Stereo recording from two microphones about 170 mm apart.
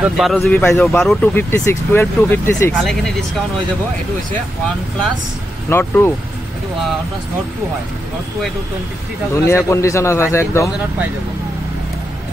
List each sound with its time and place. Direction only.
0.0 s speech: centre (ahead or behind)
0.4 s speech: 10° left (ahead or behind)
2.8 s speech: centre (ahead or behind)
5.7 s speech: 15° left (ahead or behind)
9.3 s speech: 15° left (ahead or behind)